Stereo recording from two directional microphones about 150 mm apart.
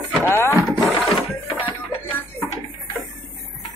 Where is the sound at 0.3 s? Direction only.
15° left (ahead or behind).